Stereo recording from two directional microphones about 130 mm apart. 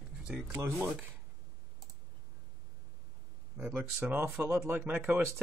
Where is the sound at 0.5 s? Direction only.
15° right (ahead or behind).